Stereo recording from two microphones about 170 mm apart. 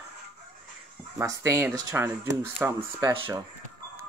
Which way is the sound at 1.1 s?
20° right (ahead or behind).